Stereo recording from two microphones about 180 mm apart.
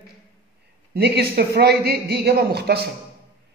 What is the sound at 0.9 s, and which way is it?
A man's voice, 60° right (ahead or behind).